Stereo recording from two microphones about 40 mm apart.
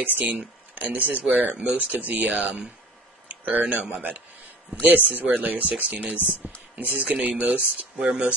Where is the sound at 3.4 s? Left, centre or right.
Right.